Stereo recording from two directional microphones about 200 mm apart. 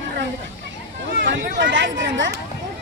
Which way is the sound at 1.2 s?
65° right (ahead or behind).